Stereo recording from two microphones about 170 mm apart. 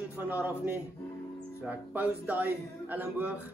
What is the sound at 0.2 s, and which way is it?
Speech, 10° right (ahead or behind).